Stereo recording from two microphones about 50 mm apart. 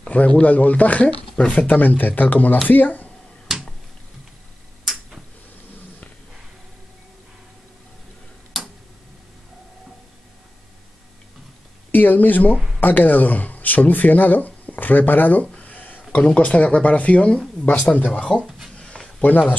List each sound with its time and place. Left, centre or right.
0.0 s speech: left
3.5 s finger snapping: centre
8.5 s tick-tock: centre
11.9 s speech: left
12.5 s speech: centre
12.8 s speech: left
15.5 s a sound: left
16.3 s speech: left
18.8 s a sound: centre
19.2 s speech: left